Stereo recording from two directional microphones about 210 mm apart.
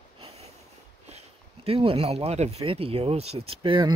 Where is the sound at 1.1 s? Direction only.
25° right (ahead or behind).